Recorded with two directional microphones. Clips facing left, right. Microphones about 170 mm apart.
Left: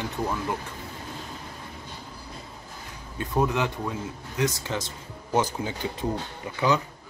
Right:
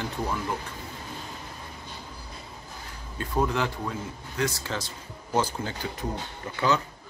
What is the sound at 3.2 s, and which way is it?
A man's voice, 20° left (ahead or behind).